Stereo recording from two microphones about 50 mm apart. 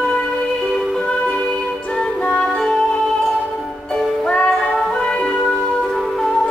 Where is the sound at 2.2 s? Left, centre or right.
Left.